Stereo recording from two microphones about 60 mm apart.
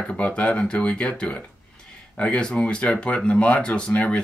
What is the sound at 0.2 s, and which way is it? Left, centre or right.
Speech, centre.